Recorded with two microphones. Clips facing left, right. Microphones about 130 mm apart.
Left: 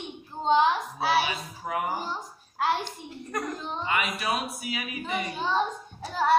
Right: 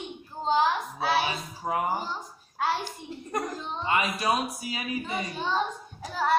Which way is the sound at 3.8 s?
30° right (ahead or behind).